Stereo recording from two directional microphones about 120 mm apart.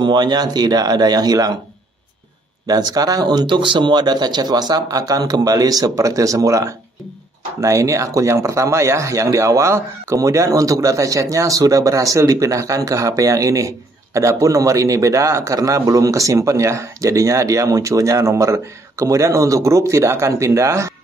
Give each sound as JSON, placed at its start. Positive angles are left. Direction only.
{"t": 0.0, "sound": "speech", "side_deg": -35}
{"t": 2.6, "sound": "speech", "side_deg": -35}